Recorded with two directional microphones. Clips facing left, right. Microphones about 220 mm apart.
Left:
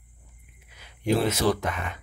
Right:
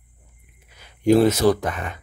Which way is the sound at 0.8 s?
45° right (ahead or behind).